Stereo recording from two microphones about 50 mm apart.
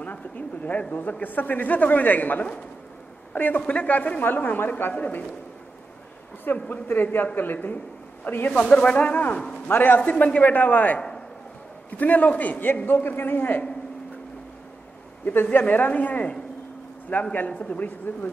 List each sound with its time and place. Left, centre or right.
0.0 s a man's voice: left
4.9 s a man's voice: left
6.4 s a man's voice: left
8.5 s a man's voice: centre
9.1 s a man's voice: left
11.0 s a sound: centre
12.0 s a man's voice: left
15.2 s a man's voice: left
18.1 s speech: left